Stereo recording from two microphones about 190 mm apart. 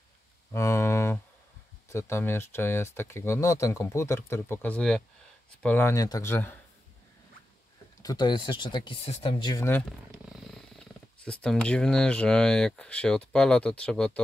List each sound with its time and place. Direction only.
0.5 s a sound: 15° left (ahead or behind)
1.9 s speech: 15° left (ahead or behind)
8.0 s speech: 20° left (ahead or behind)
10.4 s wild animals: 5° left (ahead or behind)
11.4 s speech: 5° left (ahead or behind)